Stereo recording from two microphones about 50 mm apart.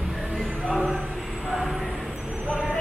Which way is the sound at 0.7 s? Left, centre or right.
Centre.